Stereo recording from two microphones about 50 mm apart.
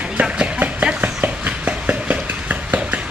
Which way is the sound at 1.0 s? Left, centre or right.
Right.